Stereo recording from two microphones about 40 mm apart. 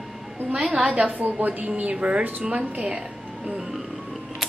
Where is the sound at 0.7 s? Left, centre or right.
Right.